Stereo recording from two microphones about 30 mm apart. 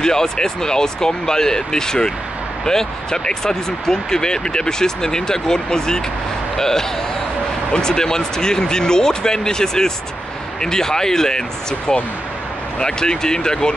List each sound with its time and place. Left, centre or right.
0.0 s speech: left